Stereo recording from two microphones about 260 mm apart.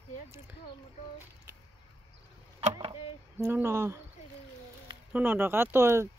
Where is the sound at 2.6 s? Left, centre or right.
Centre.